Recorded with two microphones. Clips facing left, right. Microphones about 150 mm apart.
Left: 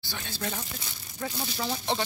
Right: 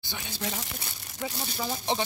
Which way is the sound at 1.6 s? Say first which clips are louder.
Right 1 dB; 15° right (ahead or behind).